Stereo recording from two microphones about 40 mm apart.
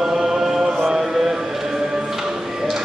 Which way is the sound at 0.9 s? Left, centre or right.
Centre.